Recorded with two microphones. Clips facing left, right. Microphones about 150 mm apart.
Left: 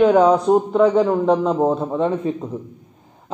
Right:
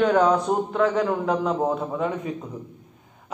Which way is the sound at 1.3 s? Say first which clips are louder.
Left 6 dB; 25° left (ahead or behind).